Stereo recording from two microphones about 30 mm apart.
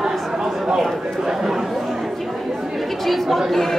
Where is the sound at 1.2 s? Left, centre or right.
Centre.